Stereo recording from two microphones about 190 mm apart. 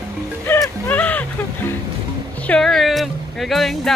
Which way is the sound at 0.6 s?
5° left (ahead or behind).